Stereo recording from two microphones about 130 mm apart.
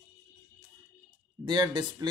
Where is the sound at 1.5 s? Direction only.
35° right (ahead or behind).